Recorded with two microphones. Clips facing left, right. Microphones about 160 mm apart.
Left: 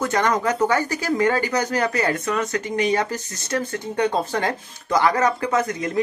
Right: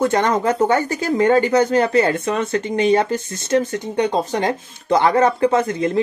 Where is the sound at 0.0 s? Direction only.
25° right (ahead or behind).